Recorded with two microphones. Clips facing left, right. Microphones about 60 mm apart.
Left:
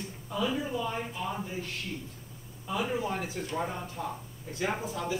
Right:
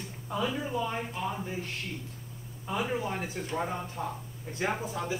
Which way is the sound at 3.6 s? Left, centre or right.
Centre.